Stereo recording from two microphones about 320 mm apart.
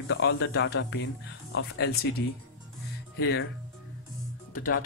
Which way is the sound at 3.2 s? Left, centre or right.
Left.